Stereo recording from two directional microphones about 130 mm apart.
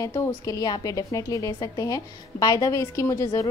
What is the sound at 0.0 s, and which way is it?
A woman's voice, 25° left (ahead or behind).